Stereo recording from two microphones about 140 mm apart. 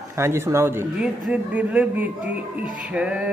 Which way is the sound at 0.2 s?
20° right (ahead or behind).